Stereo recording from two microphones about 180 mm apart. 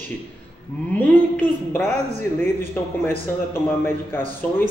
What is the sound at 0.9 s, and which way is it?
Speech, 10° left (ahead or behind).